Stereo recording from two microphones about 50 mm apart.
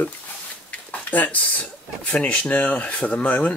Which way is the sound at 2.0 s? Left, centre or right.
Left.